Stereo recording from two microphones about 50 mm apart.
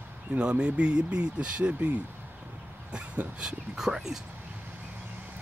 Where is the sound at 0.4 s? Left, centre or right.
Centre.